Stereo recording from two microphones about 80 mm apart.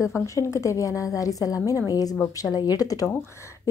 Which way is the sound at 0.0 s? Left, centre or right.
Left.